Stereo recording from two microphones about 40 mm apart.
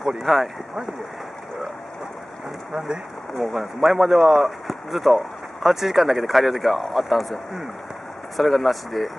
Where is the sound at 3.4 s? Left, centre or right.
Centre.